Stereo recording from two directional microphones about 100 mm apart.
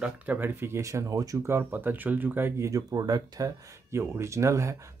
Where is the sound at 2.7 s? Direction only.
40° right (ahead or behind).